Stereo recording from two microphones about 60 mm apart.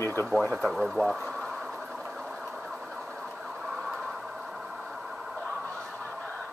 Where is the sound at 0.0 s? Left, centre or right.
Left.